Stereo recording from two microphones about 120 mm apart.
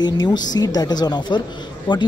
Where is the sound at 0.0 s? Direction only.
35° left (ahead or behind).